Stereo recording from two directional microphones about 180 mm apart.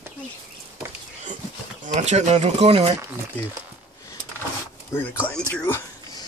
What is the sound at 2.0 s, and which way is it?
Speech, 40° right (ahead or behind).